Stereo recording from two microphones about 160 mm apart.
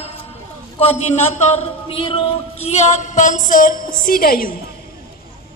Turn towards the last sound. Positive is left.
turn(degrees=65)  # may be behind; listen again after turning